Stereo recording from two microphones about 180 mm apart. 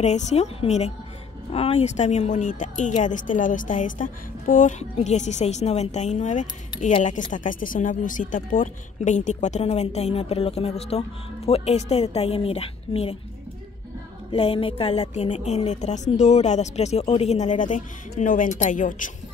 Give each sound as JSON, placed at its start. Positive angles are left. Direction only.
{"t": 0.0, "sound": "speech", "side_deg": 40}
{"t": 14.3, "sound": "speech", "side_deg": 30}